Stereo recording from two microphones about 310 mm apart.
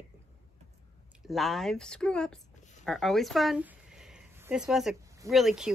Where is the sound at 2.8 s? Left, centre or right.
Centre.